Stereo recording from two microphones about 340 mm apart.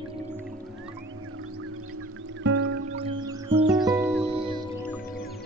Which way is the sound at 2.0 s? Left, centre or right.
Right.